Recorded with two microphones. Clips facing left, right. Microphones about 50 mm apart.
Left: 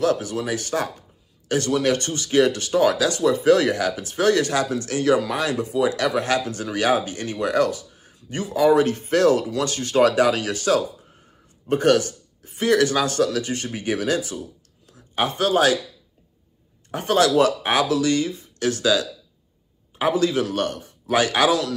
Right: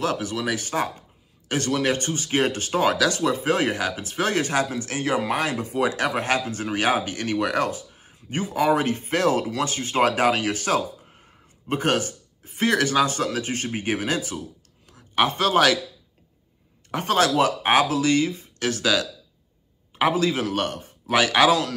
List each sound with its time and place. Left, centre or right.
0.0 s a man's voice: right
2.0 s a man's voice: right
7.6 s a man's voice: right
16.9 s a man's voice: right